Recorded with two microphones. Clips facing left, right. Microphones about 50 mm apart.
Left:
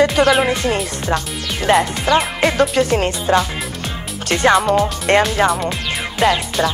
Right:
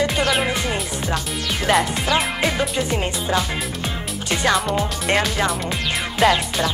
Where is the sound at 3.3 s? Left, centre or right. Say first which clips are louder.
Left 7 dB; left.